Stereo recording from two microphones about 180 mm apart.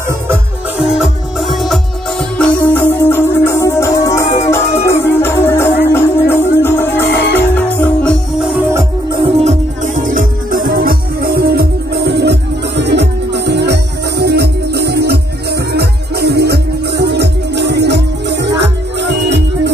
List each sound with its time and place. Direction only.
0.3 s music: 5° right (ahead or behind)
9.2 s music: 35° right (ahead or behind)
10.0 s music: 50° right (ahead or behind); by 19.7 s 75° right (ahead or behind)